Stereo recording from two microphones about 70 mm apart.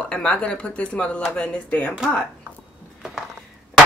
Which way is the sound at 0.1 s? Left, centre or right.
Centre.